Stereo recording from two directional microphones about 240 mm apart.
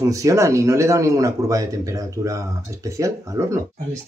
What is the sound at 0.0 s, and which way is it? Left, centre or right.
Speech, centre.